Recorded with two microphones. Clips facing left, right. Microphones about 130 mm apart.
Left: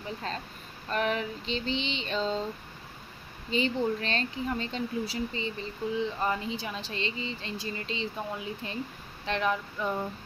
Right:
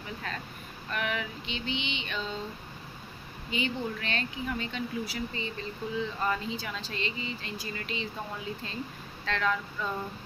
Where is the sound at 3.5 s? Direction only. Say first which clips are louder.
Left 5 dB; 35° left (ahead or behind).